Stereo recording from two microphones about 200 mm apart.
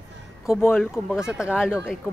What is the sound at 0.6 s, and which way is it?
Speech, 10° left (ahead or behind).